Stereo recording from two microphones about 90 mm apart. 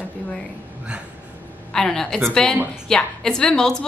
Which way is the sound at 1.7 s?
5° left (ahead or behind).